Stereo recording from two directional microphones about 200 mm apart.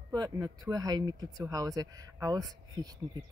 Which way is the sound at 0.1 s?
20° right (ahead or behind).